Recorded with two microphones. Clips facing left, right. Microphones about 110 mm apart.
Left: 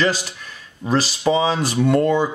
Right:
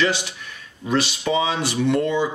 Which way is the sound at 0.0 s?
40° left (ahead or behind).